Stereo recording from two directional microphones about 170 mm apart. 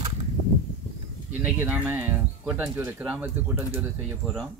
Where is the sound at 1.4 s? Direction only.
10° right (ahead or behind).